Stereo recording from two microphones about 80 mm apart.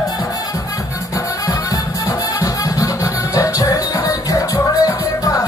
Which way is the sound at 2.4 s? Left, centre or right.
Left.